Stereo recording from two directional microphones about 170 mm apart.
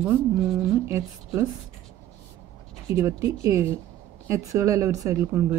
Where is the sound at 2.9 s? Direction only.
20° right (ahead or behind).